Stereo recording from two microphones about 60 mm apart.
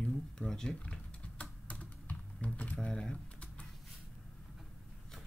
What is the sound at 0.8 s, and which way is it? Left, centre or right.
Typing, left.